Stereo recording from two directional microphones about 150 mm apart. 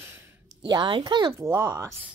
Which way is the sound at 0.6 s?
30° right (ahead or behind).